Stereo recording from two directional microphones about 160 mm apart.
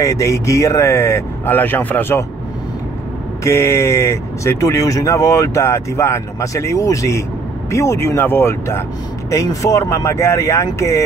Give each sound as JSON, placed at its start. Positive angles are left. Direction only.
{"t": 0.0, "sound": "speech", "side_deg": 20}
{"t": 3.4, "sound": "speech", "side_deg": 15}